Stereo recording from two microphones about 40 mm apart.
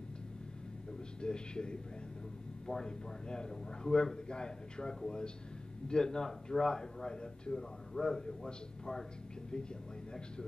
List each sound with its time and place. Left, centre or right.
1.2 s a man's voice: left
8.5 s a man's voice: left